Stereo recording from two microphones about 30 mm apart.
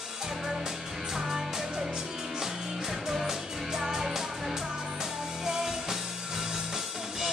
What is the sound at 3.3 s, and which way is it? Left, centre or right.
Music, centre.